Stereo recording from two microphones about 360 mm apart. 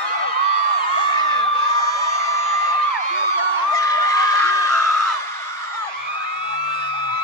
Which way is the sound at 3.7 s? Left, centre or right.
Centre.